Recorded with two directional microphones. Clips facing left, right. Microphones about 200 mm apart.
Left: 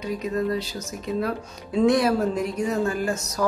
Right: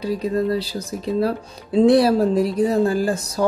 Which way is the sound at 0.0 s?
35° right (ahead or behind).